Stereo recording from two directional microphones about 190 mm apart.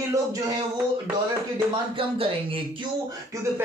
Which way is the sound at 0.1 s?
20° right (ahead or behind).